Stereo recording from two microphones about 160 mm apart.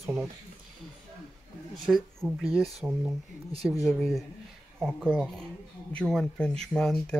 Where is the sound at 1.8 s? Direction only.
Centre (ahead or behind).